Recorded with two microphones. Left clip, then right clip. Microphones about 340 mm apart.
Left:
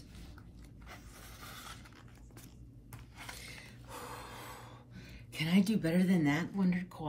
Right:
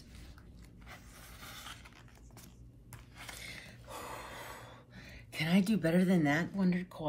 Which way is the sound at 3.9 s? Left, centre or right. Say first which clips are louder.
Right 1 dB; centre.